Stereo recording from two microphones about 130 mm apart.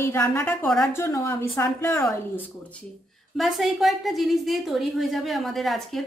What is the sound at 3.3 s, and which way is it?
A woman's voice, centre (ahead or behind).